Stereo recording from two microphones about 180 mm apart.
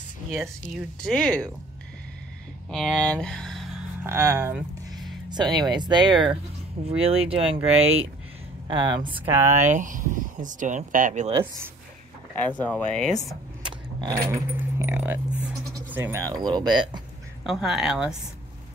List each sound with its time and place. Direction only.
0.3 s speech: 5° right (ahead or behind)
2.7 s speech: centre (ahead or behind)
4.0 s speech: 15° right (ahead or behind)
5.3 s speech: 25° right (ahead or behind)
9.2 s speech: 15° right (ahead or behind)
9.6 s speech: 45° right (ahead or behind)
12.4 s speech: 10° left (ahead or behind)
13.6 s keys jangling: 25° right (ahead or behind)
15.7 s speech: 15° right (ahead or behind)
17.4 s speech: centre (ahead or behind)